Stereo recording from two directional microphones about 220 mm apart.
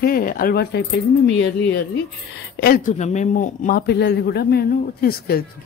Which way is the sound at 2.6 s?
40° left (ahead or behind).